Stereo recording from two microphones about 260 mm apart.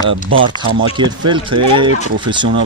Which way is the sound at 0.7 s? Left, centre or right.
Centre.